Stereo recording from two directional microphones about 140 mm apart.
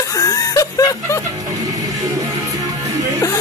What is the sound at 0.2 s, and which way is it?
Chuckle, 25° left (ahead or behind).